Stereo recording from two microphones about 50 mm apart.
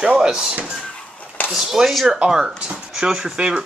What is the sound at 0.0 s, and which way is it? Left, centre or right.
Speech, centre.